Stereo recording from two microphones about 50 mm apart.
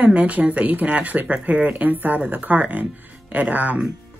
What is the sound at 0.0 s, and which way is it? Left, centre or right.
Speech, right.